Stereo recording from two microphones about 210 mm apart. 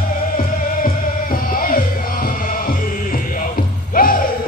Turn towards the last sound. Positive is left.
turn(degrees=40)  # may be behind; listen again after turning